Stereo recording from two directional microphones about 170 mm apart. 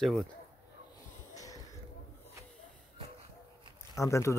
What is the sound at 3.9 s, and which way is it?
Speech, 20° left (ahead or behind).